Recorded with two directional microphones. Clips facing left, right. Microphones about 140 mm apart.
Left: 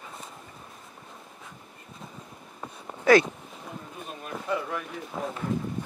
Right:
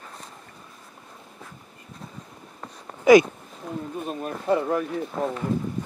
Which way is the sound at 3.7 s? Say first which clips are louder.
Right 9 dB; centre (ahead or behind).